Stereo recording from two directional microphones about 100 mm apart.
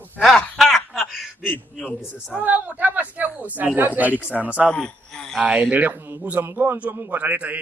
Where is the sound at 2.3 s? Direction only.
15° right (ahead or behind).